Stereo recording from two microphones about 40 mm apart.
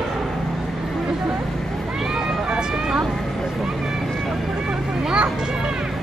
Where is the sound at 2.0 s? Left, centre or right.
Centre.